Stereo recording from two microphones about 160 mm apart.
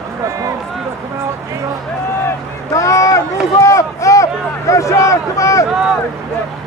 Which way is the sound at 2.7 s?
20° left (ahead or behind).